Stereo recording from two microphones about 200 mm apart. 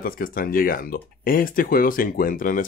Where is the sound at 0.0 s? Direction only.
45° left (ahead or behind).